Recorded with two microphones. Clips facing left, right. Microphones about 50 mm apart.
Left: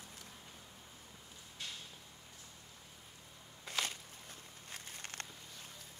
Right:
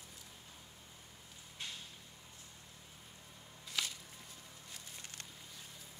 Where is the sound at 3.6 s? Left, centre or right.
Left.